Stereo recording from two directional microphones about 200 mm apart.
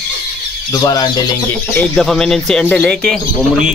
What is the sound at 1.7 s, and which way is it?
Speech, 5° left (ahead or behind).